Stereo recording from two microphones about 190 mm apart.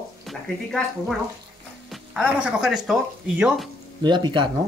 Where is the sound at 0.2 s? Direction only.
Centre (ahead or behind).